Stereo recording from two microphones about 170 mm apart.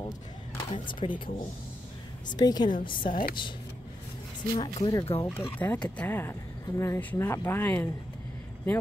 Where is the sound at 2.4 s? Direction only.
25° left (ahead or behind).